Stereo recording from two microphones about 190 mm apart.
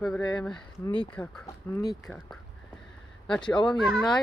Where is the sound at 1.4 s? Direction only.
20° left (ahead or behind).